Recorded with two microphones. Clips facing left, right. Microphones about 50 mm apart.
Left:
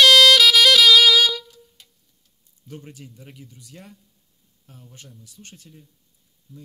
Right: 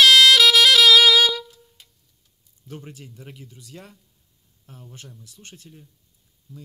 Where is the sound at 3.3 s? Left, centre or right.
Right.